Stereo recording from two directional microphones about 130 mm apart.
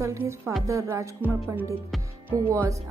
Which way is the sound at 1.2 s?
15° right (ahead or behind).